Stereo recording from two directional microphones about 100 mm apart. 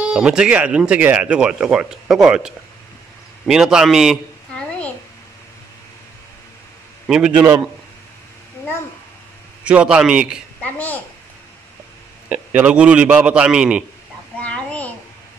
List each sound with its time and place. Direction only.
0.1 s a man's voice: 5° right (ahead or behind)
4.6 s a sound: 10° left (ahead or behind)
7.1 s speech: 10° right (ahead or behind)
9.7 s speech: 10° right (ahead or behind)
10.6 s a child's voice: 15° left (ahead or behind)
12.3 s speech: 10° right (ahead or behind)
14.4 s a sound: 15° left (ahead or behind)